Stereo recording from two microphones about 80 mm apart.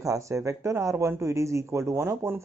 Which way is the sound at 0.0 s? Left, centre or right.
Right.